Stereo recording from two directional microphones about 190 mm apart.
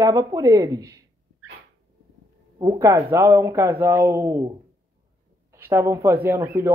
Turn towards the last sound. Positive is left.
turn(degrees=-15)  # may be behind; listen again after turning